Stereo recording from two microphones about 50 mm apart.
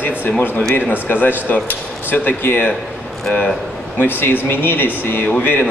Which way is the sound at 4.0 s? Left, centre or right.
Left.